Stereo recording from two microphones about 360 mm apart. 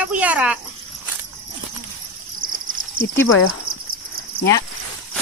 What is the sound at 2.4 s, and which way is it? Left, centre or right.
Cricket, right.